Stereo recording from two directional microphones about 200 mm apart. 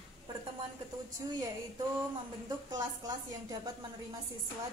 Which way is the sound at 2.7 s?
20° right (ahead or behind).